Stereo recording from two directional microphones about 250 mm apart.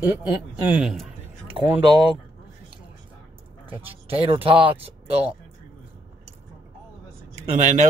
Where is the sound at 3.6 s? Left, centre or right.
Right.